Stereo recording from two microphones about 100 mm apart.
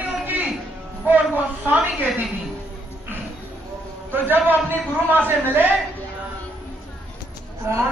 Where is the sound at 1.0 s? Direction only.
15° right (ahead or behind).